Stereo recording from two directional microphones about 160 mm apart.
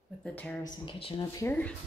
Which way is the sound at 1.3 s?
15° left (ahead or behind).